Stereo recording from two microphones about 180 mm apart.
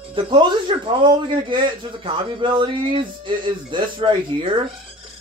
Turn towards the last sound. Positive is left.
turn(degrees=-30)  # may be behind; listen again after turning